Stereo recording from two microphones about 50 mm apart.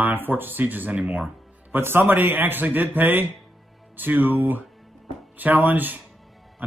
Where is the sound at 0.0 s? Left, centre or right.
Right.